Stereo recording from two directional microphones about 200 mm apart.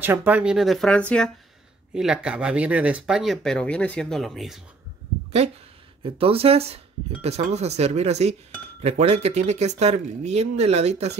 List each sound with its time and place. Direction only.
0.0 s speech: 10° right (ahead or behind)
6.1 s speech: 30° right (ahead or behind)